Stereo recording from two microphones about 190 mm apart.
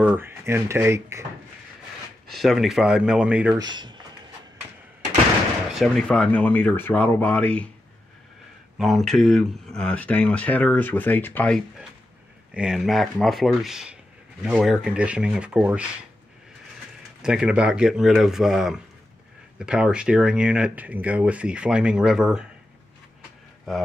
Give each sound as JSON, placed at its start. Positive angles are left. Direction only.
{"t": 0.0, "sound": "speech", "side_deg": -10}
{"t": 2.2, "sound": "speech", "side_deg": 0}
{"t": 3.5, "sound": "speech", "side_deg": -25}
{"t": 5.7, "sound": "speech", "side_deg": 0}
{"t": 8.7, "sound": "speech", "side_deg": 0}
{"t": 12.5, "sound": "speech", "side_deg": -5}
{"t": 17.2, "sound": "speech", "side_deg": -5}